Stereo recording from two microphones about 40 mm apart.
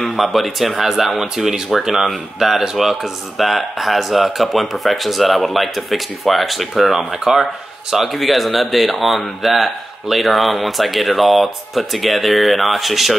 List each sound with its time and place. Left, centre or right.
0.0 s a man's voice: centre